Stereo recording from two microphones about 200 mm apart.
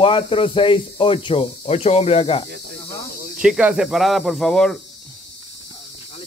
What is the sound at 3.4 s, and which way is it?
Speech, 5° right (ahead or behind).